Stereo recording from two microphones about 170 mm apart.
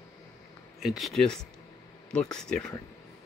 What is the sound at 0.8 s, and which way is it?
Speech, centre (ahead or behind).